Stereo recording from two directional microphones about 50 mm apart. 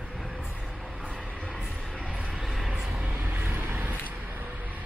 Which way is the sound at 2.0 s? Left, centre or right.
Right.